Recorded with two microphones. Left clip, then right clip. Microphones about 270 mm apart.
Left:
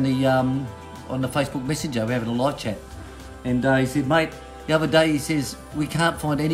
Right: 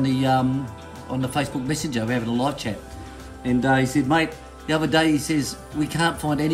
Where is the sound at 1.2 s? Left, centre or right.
Centre.